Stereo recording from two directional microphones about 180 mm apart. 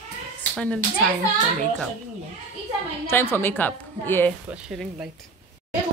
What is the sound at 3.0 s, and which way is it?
A woman's voice, 15° left (ahead or behind).